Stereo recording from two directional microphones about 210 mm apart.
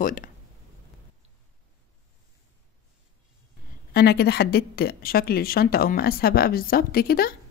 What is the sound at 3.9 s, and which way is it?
A woman's voice, 50° left (ahead or behind).